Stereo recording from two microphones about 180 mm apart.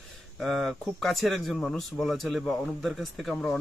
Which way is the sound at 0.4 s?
Centre (ahead or behind).